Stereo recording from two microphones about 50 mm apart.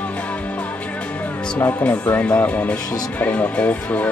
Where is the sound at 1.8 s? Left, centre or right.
Left.